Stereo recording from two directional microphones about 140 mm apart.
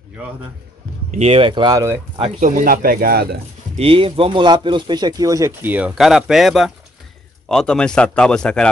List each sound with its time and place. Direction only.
1.1 s speech: 45° right (ahead or behind)
2.4 s speech: 80° right
3.7 s speech: 40° right (ahead or behind); by 8.6 s 5° left (ahead or behind)